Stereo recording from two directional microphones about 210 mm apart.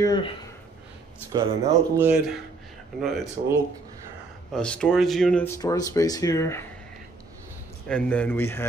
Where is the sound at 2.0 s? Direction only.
5° right (ahead or behind).